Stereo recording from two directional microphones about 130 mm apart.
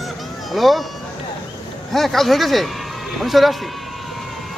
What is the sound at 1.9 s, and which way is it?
Speech, centre (ahead or behind).